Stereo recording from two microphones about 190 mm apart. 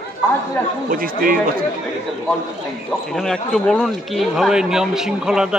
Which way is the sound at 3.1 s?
Centre (ahead or behind).